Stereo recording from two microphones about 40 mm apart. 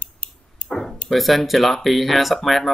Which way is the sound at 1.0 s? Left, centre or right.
Centre.